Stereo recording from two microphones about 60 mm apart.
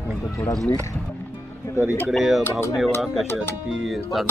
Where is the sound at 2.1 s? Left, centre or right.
Centre.